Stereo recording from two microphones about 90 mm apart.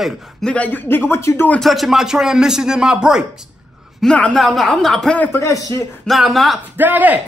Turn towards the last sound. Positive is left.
turn(degrees=-20)  # may be behind; listen again after turning